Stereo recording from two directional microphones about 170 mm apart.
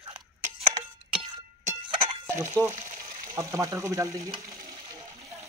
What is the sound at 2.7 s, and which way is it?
Frying, 40° right (ahead or behind).